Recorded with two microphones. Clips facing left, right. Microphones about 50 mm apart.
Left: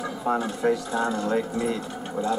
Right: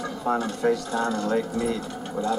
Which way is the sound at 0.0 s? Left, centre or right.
Centre.